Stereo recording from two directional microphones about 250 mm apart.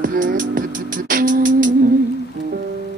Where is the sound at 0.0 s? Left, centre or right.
Right.